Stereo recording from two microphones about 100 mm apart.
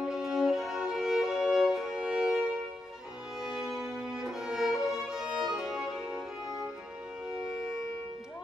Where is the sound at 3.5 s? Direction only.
5° right (ahead or behind).